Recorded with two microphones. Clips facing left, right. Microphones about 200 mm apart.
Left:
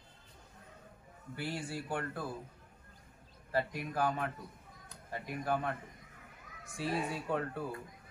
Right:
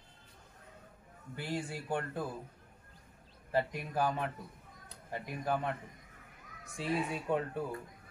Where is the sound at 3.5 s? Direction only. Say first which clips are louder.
Right 1 dB; 20° right (ahead or behind).